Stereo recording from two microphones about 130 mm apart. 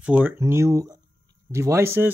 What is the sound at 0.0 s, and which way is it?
Speech, 10° right (ahead or behind).